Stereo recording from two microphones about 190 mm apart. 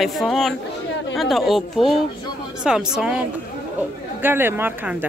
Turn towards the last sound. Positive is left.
turn(degrees=-10)  # may be behind; listen again after turning